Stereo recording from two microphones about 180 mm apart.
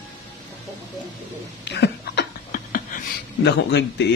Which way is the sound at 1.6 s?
70° left (ahead or behind).